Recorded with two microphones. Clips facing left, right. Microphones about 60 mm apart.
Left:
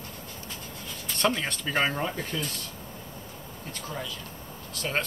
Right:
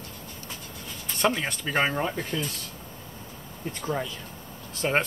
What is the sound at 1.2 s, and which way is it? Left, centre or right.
Speech, centre.